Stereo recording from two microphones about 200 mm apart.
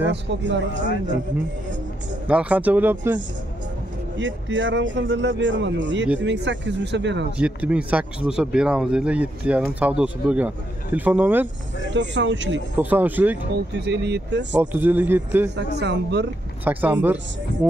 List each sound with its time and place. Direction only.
0.1 s speech: 65° right (ahead or behind)
2.2 s speech: 5° right (ahead or behind)
4.2 s a man's voice: 70° right (ahead or behind)
7.3 s speech: 5° right (ahead or behind)
11.9 s speech: 65° right (ahead or behind)
12.7 s speech: 10° right (ahead or behind)
13.7 s speech: 60° right (ahead or behind)
14.5 s speech: 10° right (ahead or behind)
15.5 s speech: 60° right (ahead or behind)
16.6 s speech: 10° right (ahead or behind)